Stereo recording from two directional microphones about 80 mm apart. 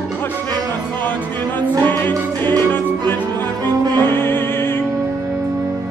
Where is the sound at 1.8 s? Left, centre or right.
Left.